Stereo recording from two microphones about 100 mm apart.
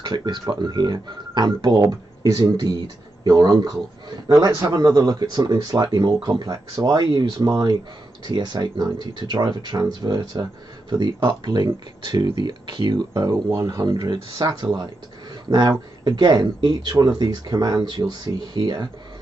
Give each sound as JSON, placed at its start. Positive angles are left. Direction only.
{"t": 0.0, "sound": "speech", "side_deg": -45}
{"t": 7.4, "sound": "speech", "side_deg": -35}
{"t": 8.3, "sound": "speech", "side_deg": -45}
{"t": 13.6, "sound": "speech", "side_deg": -35}
{"t": 16.0, "sound": "speech", "side_deg": -50}